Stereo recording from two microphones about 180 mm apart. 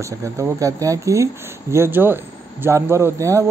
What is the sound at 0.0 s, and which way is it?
Speech, 15° right (ahead or behind).